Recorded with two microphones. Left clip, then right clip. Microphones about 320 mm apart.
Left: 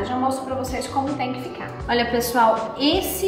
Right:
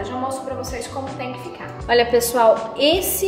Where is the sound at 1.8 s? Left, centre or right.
Right.